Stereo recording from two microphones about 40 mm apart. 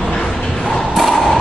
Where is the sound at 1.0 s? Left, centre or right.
Centre.